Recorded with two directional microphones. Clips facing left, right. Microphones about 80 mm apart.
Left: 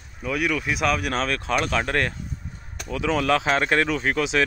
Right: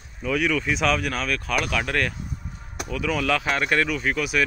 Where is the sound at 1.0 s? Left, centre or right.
Left.